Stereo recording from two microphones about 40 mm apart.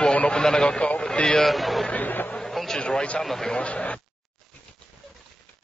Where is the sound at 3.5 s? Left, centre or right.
Left.